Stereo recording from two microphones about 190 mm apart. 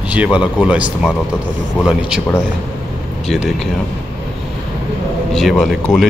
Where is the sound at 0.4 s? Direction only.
5° right (ahead or behind).